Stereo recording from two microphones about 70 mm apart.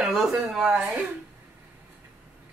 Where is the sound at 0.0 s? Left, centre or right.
Centre.